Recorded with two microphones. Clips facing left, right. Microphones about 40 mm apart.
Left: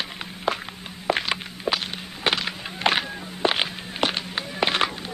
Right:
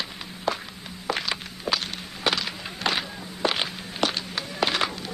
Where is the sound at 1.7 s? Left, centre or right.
Left.